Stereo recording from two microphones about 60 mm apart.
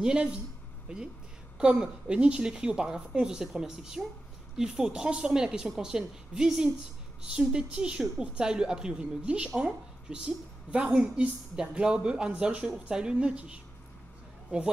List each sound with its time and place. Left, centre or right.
0.0 s a woman's voice: centre